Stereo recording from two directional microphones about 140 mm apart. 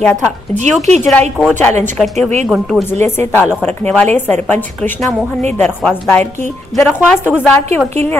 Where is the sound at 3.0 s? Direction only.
15° left (ahead or behind).